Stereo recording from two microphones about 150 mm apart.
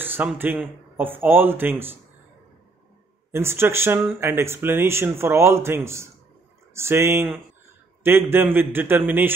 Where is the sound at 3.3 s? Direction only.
15° right (ahead or behind).